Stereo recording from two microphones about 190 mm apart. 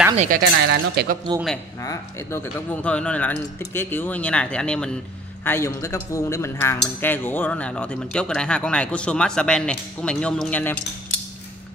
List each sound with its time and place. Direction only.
0.1 s speech: 40° right (ahead or behind)
0.4 s speech: 65° right (ahead or behind)
1.8 s speech: 15° left (ahead or behind)